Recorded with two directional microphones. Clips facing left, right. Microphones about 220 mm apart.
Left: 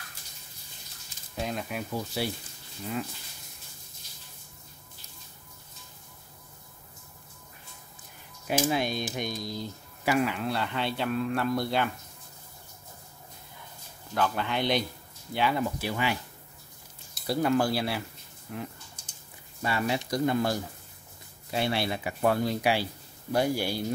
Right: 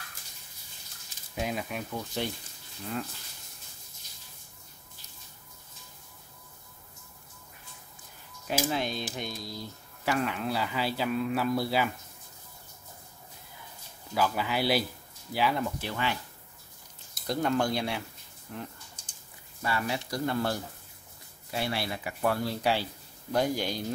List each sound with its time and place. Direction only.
1.4 s a man's voice: 5° right (ahead or behind)
8.5 s speech: 15° left (ahead or behind)
10.0 s a man's voice: 5° left (ahead or behind)
14.1 s a man's voice: 5° right (ahead or behind)
19.6 s speech: 20° left (ahead or behind)